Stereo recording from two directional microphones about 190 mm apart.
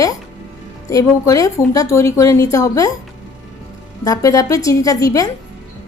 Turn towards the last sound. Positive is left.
turn(degrees=20)  # may be behind; listen again after turning